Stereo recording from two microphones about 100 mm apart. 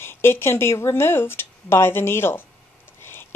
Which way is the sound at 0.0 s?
25° left (ahead or behind).